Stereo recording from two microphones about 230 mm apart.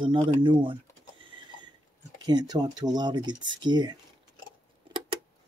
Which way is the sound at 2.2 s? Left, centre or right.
Centre.